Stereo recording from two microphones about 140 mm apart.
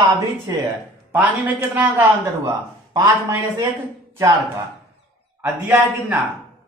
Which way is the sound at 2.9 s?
20° right (ahead or behind).